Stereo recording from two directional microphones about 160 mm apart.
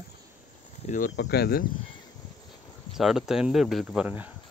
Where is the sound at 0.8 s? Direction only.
55° left (ahead or behind).